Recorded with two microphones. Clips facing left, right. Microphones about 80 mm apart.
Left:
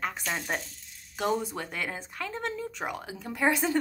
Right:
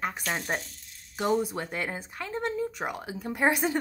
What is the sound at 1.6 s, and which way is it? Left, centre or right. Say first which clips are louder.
Speech: right 2 dB; centre.